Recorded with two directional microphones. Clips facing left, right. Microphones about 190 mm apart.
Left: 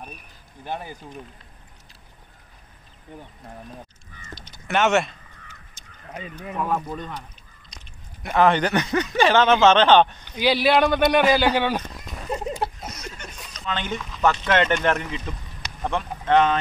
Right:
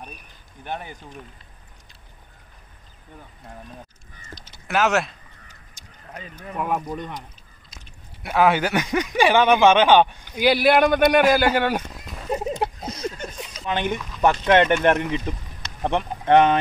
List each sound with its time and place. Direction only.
4.4 s speech: centre (ahead or behind)
6.5 s speech: 10° right (ahead or behind)
7.7 s chewing: 5° right (ahead or behind)
8.2 s speech: 5° right (ahead or behind)
12.3 s a sound: 20° right (ahead or behind)
13.5 s a sound: 15° right (ahead or behind)
14.2 s speech: 15° right (ahead or behind)